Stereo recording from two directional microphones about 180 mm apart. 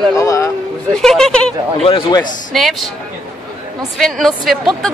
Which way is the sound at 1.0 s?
5° left (ahead or behind).